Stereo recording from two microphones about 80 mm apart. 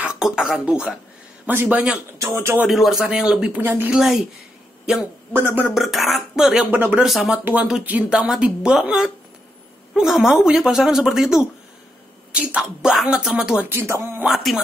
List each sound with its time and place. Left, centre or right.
0.2 s a man's voice: centre
2.2 s speech: right
2.7 s speech: centre
3.6 s a man's voice: right
3.9 s a woman's voice: centre
5.3 s a man's voice: right
5.8 s a woman's voice: centre
6.7 s a man's voice: right
7.1 s a woman's voice: centre
7.8 s a woman's voice: centre
13.7 s speech: right
14.2 s a woman's voice: centre